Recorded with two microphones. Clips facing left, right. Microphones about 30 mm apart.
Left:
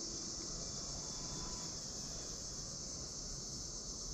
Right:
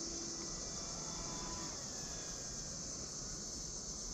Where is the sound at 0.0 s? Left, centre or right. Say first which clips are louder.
Right 1 dB; centre.